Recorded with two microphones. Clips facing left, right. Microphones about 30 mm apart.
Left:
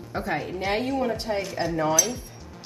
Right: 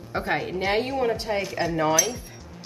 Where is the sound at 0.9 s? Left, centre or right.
Centre.